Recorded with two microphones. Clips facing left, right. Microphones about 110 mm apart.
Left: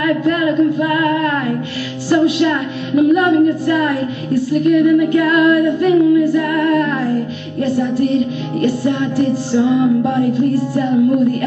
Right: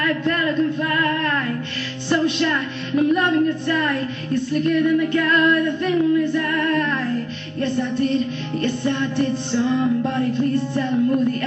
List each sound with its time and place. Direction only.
0.0 s speech: 10° left (ahead or behind)